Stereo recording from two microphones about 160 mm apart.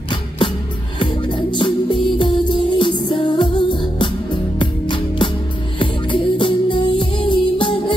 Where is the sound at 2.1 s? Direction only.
30° left (ahead or behind).